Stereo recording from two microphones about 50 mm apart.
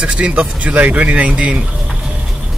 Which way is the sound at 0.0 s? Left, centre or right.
Right.